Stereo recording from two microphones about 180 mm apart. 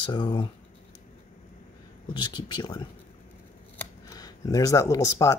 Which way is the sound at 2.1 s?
25° left (ahead or behind).